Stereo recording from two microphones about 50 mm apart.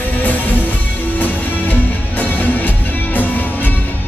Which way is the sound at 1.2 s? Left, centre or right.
Left.